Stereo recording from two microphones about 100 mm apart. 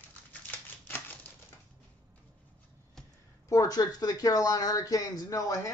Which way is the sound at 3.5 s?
35° left (ahead or behind).